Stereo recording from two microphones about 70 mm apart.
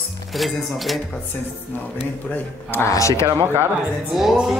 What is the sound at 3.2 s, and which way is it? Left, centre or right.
Speech, right.